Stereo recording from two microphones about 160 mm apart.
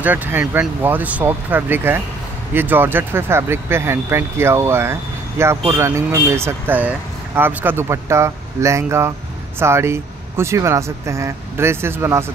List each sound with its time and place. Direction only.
0.0 s speech: 10° right (ahead or behind)